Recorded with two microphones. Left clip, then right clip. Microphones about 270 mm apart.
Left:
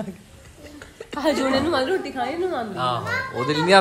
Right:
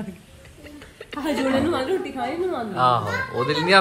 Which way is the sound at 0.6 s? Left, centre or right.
Centre.